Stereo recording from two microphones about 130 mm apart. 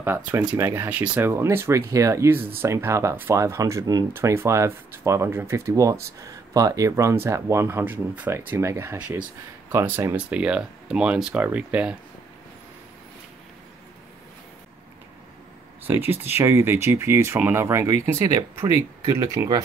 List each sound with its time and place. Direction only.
0.0 s speech: 15° right (ahead or behind)
15.8 s speech: 15° right (ahead or behind)